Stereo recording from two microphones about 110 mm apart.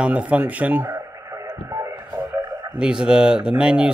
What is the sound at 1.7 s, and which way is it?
Radio, 30° right (ahead or behind).